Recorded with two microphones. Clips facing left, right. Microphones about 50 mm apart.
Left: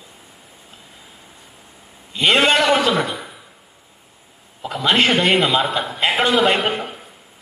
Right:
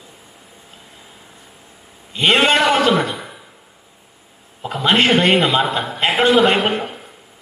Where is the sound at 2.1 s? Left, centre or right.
Right.